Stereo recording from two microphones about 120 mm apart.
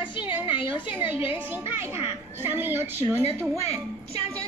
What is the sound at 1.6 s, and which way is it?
Speech, 20° right (ahead or behind).